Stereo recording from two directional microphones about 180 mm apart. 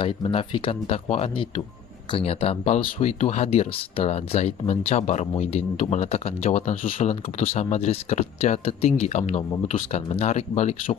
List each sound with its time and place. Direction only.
0.0 s speech: 30° left (ahead or behind)